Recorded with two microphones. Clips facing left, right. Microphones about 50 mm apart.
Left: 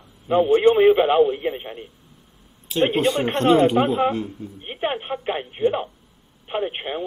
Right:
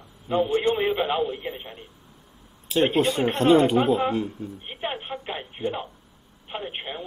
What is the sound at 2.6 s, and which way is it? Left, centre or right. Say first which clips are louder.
Speech: left 2 dB; centre.